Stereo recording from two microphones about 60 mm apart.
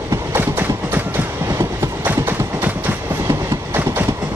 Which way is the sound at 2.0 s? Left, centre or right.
Right.